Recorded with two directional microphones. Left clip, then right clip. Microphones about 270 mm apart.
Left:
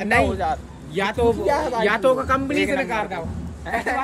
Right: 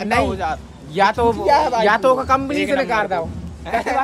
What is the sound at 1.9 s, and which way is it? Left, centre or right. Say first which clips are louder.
Speech: right 2 dB; right.